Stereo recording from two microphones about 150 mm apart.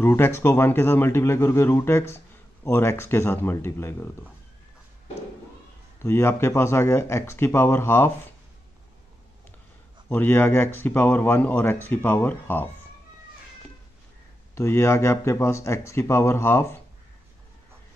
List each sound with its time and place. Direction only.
0.0 s speech: 15° left (ahead or behind)
5.9 s speech: 15° left (ahead or behind)
10.0 s speech: 15° left (ahead or behind)
14.5 s speech: 20° left (ahead or behind)